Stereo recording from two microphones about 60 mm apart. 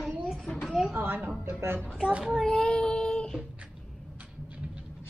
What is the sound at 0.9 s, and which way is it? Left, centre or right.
Speech, right.